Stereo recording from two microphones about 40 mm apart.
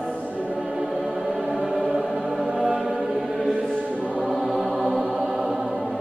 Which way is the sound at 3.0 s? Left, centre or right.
Centre.